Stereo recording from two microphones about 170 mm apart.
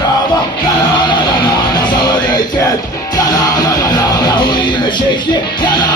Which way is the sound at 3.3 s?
25° left (ahead or behind).